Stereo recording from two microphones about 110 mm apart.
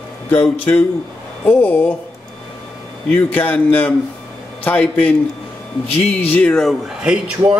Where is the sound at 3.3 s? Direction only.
15° left (ahead or behind).